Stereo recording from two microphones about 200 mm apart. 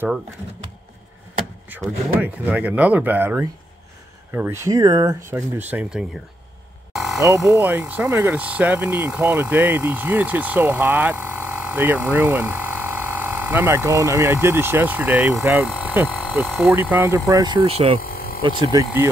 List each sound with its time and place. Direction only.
1.7 s speech: 10° right (ahead or behind)
6.9 s a sound: centre (ahead or behind)
7.2 s speech: 15° right (ahead or behind)
16.3 s speech: centre (ahead or behind)
17.6 s speech: 30° right (ahead or behind)
18.0 s a sound: 45° left (ahead or behind)
18.4 s speech: 20° right (ahead or behind)